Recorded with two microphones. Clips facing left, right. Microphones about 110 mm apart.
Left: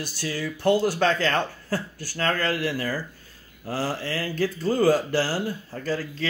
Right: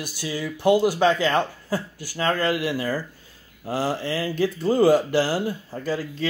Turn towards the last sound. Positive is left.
turn(degrees=-15)  # may be behind; listen again after turning